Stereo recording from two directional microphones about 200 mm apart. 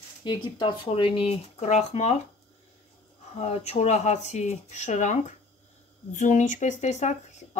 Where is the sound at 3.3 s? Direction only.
35° left (ahead or behind).